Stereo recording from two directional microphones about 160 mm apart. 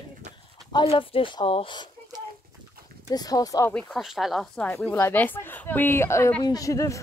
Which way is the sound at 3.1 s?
25° left (ahead or behind).